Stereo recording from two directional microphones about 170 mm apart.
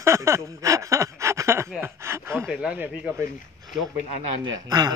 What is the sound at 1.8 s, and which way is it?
Speech, 15° right (ahead or behind).